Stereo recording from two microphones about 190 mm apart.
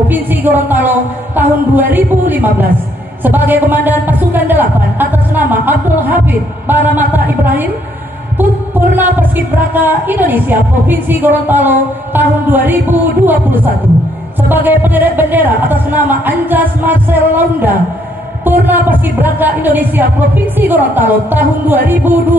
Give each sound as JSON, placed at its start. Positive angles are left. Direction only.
{"t": 0.1, "sound": "a woman's voice", "side_deg": -10}
{"t": 8.4, "sound": "a woman's voice", "side_deg": -10}